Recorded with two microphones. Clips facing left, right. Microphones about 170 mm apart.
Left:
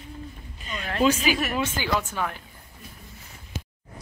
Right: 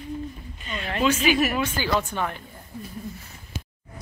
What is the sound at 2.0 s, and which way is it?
Speech, 5° left (ahead or behind).